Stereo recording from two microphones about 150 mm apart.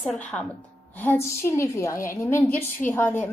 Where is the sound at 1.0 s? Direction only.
15° left (ahead or behind).